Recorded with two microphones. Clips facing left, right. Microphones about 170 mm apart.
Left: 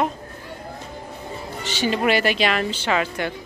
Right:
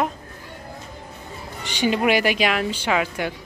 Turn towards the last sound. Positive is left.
turn(degrees=-10)  # may be behind; listen again after turning